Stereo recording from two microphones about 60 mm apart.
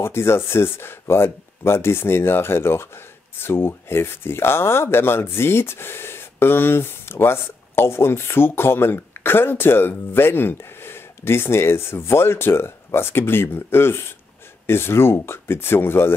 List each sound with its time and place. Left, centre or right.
0.0 s speech: left